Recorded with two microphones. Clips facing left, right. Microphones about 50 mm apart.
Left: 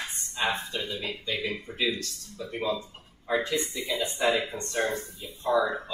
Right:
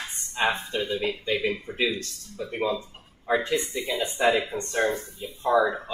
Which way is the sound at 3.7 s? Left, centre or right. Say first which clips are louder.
Right 2 dB; centre.